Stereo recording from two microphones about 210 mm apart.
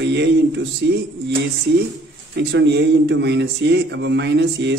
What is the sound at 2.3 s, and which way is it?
Speech, 55° right (ahead or behind).